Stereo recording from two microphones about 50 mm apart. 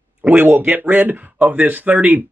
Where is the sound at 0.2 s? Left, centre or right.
Right.